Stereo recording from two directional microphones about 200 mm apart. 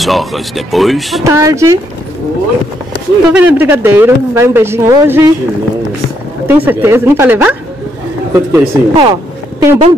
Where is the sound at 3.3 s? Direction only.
10° right (ahead or behind).